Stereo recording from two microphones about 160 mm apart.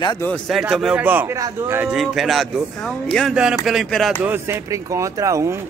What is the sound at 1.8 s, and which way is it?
Speech, centre (ahead or behind).